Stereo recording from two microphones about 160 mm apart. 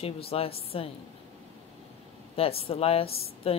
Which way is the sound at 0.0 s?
35° left (ahead or behind).